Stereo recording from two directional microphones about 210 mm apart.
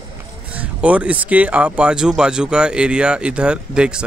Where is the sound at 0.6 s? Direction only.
5° right (ahead or behind).